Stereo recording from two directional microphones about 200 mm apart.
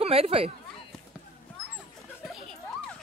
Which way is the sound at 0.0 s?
30° right (ahead or behind).